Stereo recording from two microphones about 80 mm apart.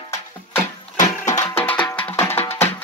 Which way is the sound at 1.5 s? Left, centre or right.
Left.